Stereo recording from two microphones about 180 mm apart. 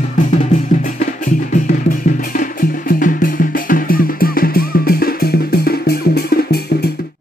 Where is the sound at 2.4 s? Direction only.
50° left (ahead or behind).